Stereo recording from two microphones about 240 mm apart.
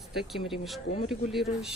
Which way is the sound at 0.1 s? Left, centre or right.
Centre.